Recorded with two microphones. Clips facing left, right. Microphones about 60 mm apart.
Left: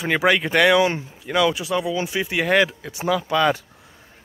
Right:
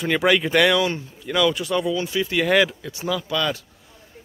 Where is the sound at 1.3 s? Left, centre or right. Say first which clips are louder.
Left 1 dB; centre.